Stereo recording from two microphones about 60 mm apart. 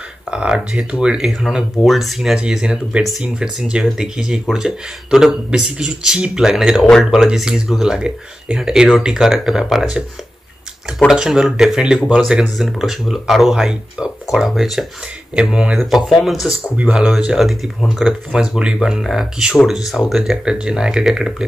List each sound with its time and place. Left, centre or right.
0.3 s speech: centre
2.3 s speech: centre
11.1 s speech: centre
15.3 s speech: centre
16.7 s speech: right
17.4 s speech: centre